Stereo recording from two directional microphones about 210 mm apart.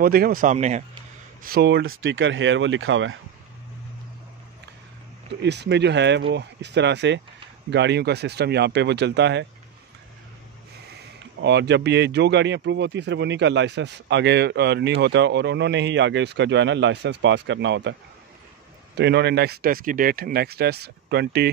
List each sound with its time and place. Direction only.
0.0 s speech: 45° right (ahead or behind)
1.4 s speech: 50° right (ahead or behind); by 3.2 s 65° right (ahead or behind)
5.3 s speech: 55° right (ahead or behind)
11.4 s speech: 55° right (ahead or behind)
18.9 s speech: 50° right (ahead or behind)